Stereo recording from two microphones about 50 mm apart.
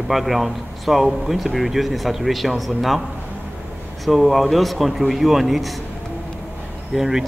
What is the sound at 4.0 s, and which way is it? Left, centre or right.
A man's voice, centre.